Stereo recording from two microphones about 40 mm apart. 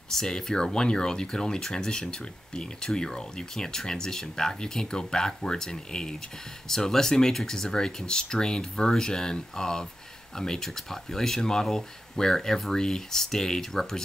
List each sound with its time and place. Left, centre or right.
0.1 s speech: centre